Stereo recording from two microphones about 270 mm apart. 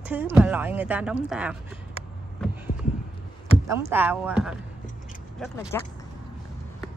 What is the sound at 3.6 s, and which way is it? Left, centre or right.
Speech, centre.